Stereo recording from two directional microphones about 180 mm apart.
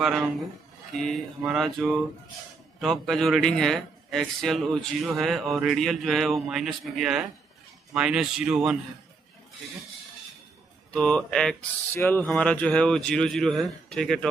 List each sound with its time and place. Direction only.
0.9 s a man's voice: centre (ahead or behind)
10.9 s a man's voice: 5° left (ahead or behind)